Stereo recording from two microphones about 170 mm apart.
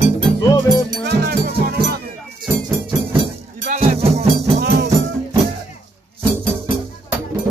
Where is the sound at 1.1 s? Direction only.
65° right (ahead or behind).